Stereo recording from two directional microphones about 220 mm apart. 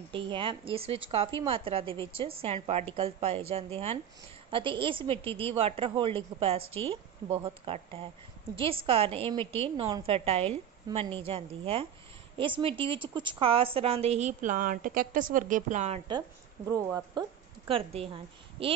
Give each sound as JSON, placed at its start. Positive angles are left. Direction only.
{"t": 0.1, "sound": "a woman's voice", "side_deg": -20}
{"t": 16.7, "sound": "a woman's voice", "side_deg": -15}